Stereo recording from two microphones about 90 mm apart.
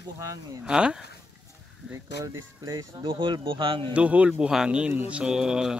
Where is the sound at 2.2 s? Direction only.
40° right (ahead or behind).